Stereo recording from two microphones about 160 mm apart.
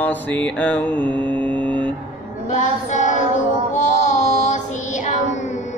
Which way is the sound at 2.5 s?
50° left (ahead or behind).